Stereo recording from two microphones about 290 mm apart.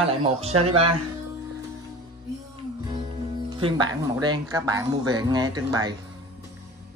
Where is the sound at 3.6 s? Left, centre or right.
Centre.